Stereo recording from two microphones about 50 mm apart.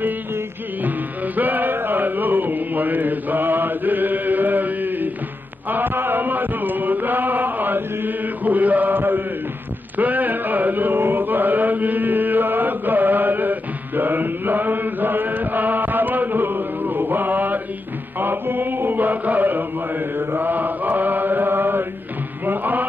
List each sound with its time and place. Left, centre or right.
0.8 s music: right
5.7 s chant: right
22.4 s music: right